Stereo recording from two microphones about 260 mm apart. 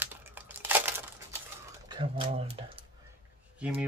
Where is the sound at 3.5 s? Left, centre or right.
Centre.